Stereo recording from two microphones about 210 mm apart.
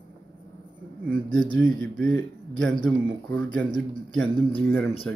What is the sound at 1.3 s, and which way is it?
A man's voice, centre (ahead or behind).